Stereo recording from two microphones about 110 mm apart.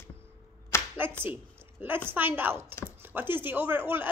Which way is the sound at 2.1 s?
20° right (ahead or behind).